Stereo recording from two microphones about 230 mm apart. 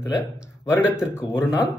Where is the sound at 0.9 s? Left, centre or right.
Centre.